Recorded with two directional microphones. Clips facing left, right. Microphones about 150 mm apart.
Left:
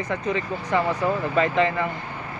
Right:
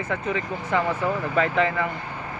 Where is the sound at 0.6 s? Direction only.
15° left (ahead or behind).